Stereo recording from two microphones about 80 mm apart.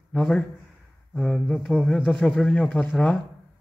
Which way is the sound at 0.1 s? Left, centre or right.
Centre.